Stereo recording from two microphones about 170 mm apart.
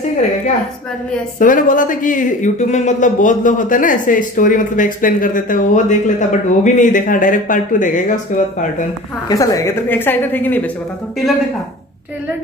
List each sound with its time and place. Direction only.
1.4 s speech: 50° left (ahead or behind)
9.3 s a woman's voice: 20° left (ahead or behind)